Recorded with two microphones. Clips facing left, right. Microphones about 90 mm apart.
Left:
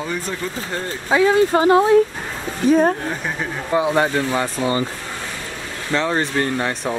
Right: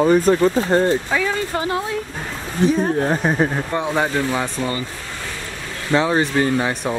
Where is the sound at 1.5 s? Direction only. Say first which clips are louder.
Left 8 dB; 30° left (ahead or behind).